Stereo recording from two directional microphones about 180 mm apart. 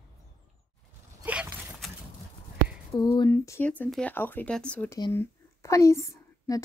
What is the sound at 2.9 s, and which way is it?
Speech, 20° left (ahead or behind).